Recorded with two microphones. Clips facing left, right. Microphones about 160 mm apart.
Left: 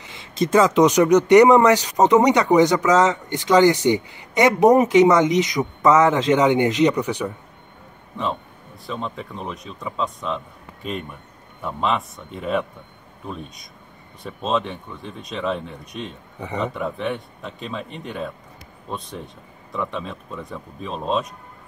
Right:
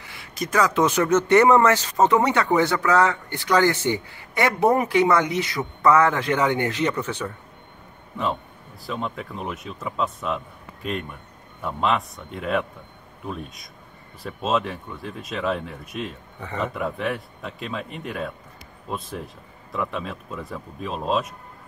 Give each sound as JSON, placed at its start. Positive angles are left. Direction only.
{"t": 0.0, "sound": "speech", "side_deg": 20}
{"t": 8.8, "sound": "speech", "side_deg": 0}
{"t": 16.3, "sound": "a man's voice", "side_deg": 15}
{"t": 16.6, "sound": "speech", "side_deg": 0}